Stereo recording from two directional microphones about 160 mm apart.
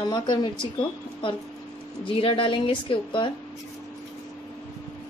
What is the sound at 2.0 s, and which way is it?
Speech, 35° left (ahead or behind).